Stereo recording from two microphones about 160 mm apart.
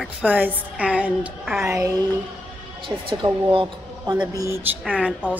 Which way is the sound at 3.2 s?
30° right (ahead or behind).